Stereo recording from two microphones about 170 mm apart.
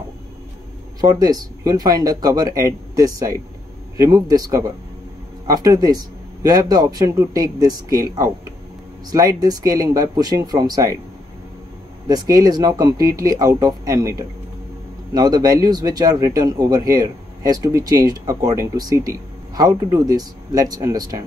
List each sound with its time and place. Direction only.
1.0 s speech: 25° right (ahead or behind)
12.1 s speech: 20° right (ahead or behind)